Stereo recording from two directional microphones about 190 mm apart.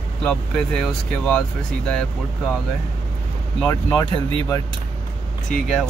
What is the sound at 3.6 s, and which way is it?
Speech, 20° left (ahead or behind).